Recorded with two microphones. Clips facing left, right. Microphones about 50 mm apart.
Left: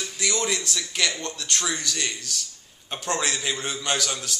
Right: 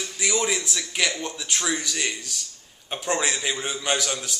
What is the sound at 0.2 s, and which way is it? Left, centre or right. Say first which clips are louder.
A man's voice: right 2 dB; centre.